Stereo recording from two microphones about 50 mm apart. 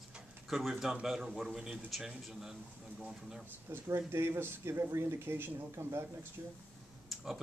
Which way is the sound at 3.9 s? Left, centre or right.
Right.